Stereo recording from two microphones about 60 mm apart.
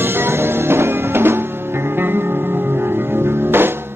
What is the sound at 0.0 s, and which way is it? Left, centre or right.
Music, right.